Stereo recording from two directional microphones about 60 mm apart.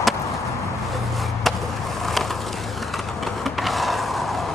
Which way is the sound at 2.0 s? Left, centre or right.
Centre.